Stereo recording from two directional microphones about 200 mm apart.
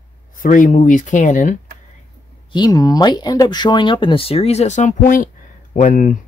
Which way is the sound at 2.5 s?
20° left (ahead or behind).